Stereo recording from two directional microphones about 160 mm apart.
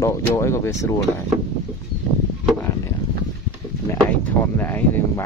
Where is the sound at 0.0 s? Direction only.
15° left (ahead or behind).